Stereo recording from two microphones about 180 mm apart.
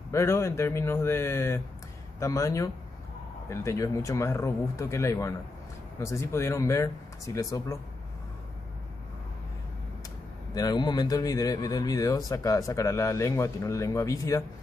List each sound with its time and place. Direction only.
0.1 s speech: 15° left (ahead or behind)
10.5 s speech: 20° left (ahead or behind)